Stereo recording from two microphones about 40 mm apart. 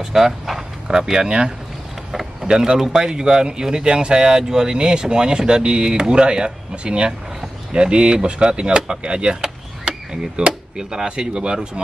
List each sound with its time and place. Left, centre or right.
0.0 s speech: centre